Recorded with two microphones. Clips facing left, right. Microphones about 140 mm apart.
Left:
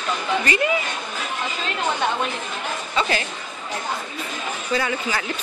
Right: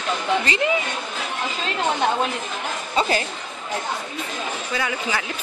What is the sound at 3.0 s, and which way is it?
Speech, 40° right (ahead or behind).